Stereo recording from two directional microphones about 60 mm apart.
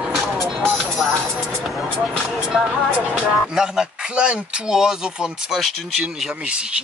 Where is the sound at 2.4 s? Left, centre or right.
Centre.